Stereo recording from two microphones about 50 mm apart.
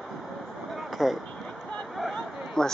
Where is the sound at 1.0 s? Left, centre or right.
Centre.